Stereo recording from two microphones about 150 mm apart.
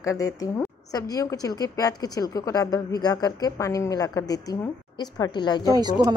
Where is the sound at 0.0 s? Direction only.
20° left (ahead or behind).